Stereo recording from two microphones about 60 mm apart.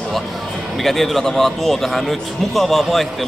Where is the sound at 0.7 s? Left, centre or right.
Centre.